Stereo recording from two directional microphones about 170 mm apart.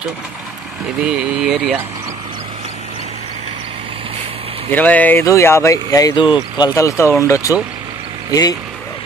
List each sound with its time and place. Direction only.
1.0 s speech: 5° right (ahead or behind)
4.6 s speech: 10° left (ahead or behind)